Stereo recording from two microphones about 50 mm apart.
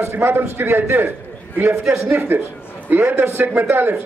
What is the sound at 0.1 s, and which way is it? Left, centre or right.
Speech, right.